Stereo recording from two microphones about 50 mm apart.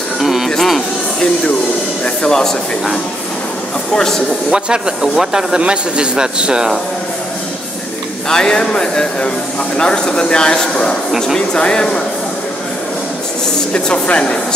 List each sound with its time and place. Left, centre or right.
0.2 s music: centre
0.5 s music: centre
2.0 s speech: centre
4.5 s speech: centre
8.3 s speech: centre
11.1 s speech: centre
11.3 s speech: centre
13.7 s speech: centre